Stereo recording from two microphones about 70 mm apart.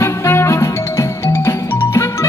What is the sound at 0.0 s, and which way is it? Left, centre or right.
Music, left.